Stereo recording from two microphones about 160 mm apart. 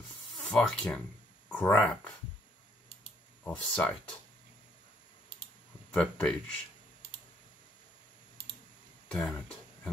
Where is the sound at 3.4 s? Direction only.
5° left (ahead or behind).